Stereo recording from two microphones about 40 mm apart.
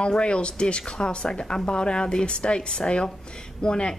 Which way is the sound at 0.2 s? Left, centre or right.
Left.